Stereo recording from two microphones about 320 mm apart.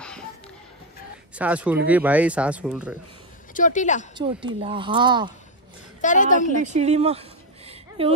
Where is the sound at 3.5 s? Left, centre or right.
Left.